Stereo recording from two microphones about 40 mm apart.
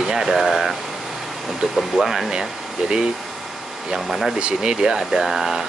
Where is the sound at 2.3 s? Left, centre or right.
Centre.